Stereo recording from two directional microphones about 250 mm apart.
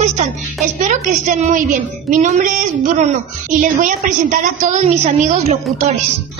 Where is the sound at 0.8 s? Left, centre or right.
Right.